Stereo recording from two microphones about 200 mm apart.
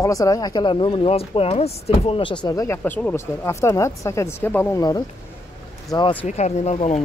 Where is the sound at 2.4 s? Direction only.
15° left (ahead or behind).